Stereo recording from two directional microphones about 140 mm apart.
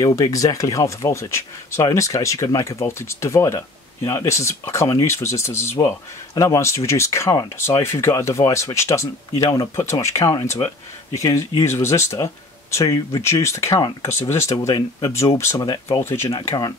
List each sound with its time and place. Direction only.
0.0 s speech: 25° left (ahead or behind)
16.3 s speech: 30° left (ahead or behind)